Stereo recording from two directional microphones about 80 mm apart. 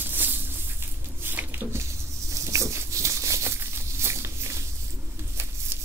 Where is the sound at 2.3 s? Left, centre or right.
Right.